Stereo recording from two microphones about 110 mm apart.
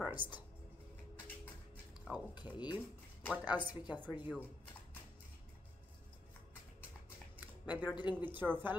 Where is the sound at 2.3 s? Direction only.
40° left (ahead or behind).